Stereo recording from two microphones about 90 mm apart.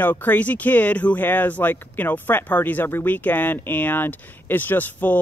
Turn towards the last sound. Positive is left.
turn(degrees=20)  # may be behind; listen again after turning